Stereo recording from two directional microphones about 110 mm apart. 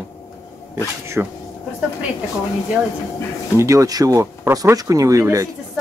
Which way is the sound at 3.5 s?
25° right (ahead or behind).